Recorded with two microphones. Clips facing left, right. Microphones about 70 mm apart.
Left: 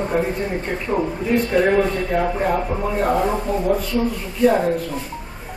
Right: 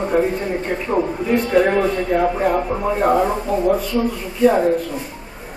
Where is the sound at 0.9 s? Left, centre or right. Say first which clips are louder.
Right 2 dB; right.